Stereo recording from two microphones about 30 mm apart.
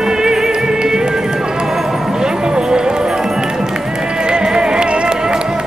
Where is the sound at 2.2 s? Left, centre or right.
Right.